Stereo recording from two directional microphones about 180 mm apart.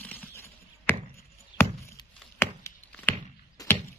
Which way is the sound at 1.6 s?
15° left (ahead or behind).